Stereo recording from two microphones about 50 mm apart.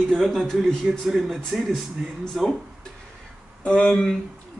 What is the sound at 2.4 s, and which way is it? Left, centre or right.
Speech, centre.